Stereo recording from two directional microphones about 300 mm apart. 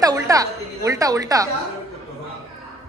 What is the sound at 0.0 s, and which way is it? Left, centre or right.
A woman's voice, centre.